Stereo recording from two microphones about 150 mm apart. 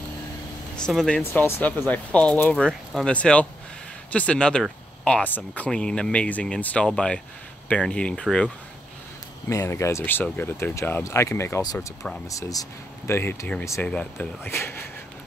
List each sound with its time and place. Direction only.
0.7 s speech: 5° left (ahead or behind)
1.2 s speech: 15° left (ahead or behind)
9.5 s speech: 15° left (ahead or behind)